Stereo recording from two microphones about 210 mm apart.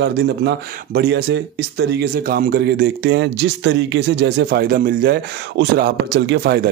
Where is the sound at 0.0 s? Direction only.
55° right (ahead or behind).